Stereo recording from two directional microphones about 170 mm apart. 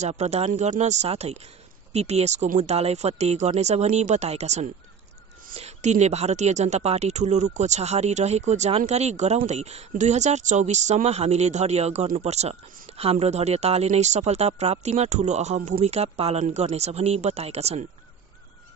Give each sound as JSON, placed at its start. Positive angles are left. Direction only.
{"t": 0.0, "sound": "speech", "side_deg": -40}